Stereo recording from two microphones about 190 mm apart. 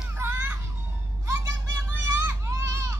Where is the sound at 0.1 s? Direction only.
15° right (ahead or behind).